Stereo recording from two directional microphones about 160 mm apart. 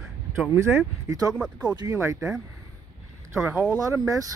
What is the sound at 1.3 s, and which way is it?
Speech, 5° right (ahead or behind).